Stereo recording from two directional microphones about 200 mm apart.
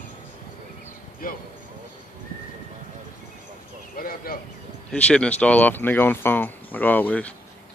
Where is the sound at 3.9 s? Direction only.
45° left (ahead or behind).